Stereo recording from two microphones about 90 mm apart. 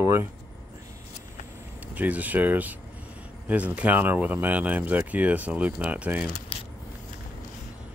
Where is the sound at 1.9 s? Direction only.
15° right (ahead or behind).